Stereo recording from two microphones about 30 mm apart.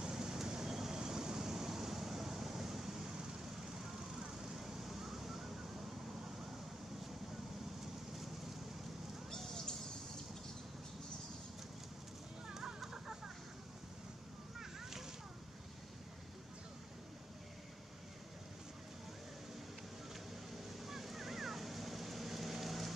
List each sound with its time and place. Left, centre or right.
0.1 s vehicle: centre
4.6 s vehicle: centre
12.5 s chicken: centre
14.6 s a sound: centre
20.8 s vehicle: centre